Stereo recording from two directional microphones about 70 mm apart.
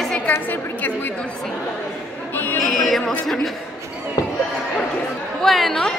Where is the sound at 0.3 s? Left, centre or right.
Left.